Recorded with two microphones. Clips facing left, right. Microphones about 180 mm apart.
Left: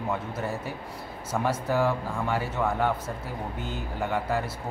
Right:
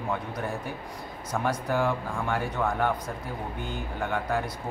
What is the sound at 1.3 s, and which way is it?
Speech, 5° left (ahead or behind).